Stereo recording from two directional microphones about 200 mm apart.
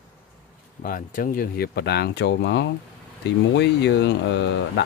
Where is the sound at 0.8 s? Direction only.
45° left (ahead or behind).